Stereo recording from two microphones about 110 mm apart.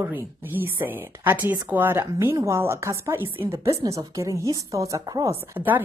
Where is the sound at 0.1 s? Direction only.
20° right (ahead or behind); by 5.3 s 35° right (ahead or behind).